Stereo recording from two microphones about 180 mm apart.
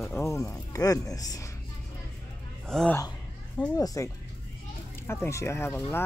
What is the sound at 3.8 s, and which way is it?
Speech, 20° left (ahead or behind).